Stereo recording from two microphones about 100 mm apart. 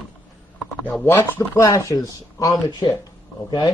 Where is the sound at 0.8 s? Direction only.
20° left (ahead or behind).